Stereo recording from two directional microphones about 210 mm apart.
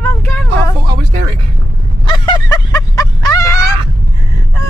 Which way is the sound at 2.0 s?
20° left (ahead or behind).